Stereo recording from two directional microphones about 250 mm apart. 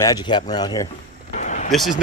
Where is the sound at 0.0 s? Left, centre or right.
Centre.